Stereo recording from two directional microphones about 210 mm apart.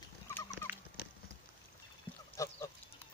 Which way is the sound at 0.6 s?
10° left (ahead or behind).